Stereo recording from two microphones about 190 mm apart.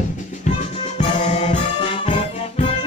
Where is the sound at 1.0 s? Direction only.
35° left (ahead or behind).